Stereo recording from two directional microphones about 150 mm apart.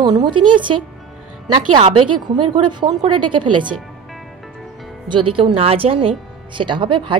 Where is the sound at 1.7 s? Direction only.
35° right (ahead or behind).